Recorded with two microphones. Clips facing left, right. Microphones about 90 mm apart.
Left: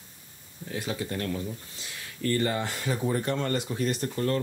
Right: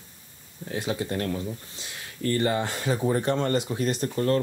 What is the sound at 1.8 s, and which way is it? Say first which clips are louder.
Speech: even; 20° right (ahead or behind).